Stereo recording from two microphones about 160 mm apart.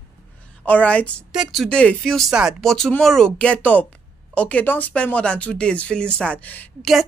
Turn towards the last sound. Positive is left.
turn(degrees=10)  # may be behind; listen again after turning